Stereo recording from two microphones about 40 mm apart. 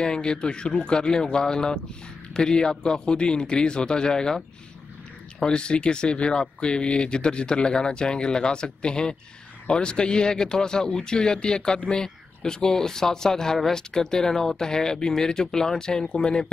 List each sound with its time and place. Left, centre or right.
0.0 s speech: left
5.4 s speech: left